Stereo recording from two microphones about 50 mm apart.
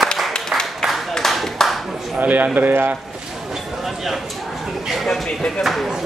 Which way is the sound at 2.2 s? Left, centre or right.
Right.